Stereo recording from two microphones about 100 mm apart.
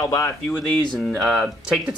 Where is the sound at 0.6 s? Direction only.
Centre (ahead or behind).